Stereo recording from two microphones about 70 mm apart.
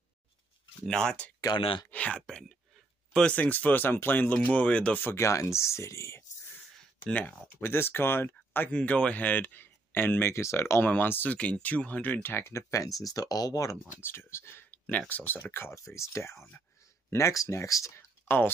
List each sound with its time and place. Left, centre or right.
0.8 s speech: centre
1.4 s speech: left
1.9 s speech: centre
5.0 s speech: left
7.1 s speech: left
7.6 s speech: left
8.7 s speech: centre; by 10.8 s left
10.8 s speech: left
11.3 s speech: centre; by 12.9 s left
13.0 s speech: left
14.0 s speech: left
15.7 s speech: left